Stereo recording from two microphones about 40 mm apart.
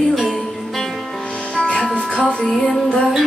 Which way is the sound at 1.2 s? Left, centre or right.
Left.